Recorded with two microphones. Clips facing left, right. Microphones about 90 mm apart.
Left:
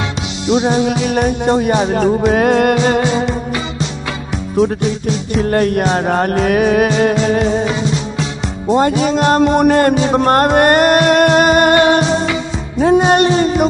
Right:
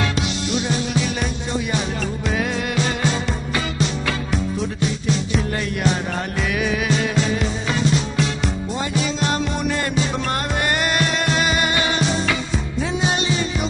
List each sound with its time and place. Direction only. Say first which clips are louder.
0.5 s music: left 13 dB; 25° left (ahead or behind)
0.8 s music: left 8 dB; 60° left (ahead or behind)
5.4 s music: left 9 dB; 50° left (ahead or behind)
9.0 s music: left 10 dB; 55° left (ahead or behind)